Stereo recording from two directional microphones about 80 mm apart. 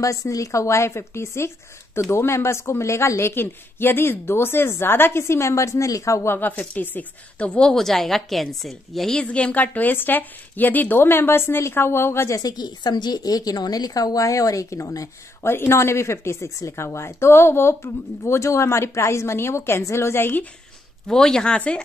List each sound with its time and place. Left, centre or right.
0.0 s a woman's voice: left
6.3 s a woman's voice: left
7.7 s a woman's voice: centre; by 12.4 s left
12.4 s a woman's voice: left
15.5 s a woman's voice: left
21.1 s a woman's voice: centre